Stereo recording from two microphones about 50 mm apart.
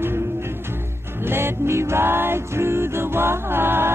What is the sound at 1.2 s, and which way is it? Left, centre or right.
Music, right.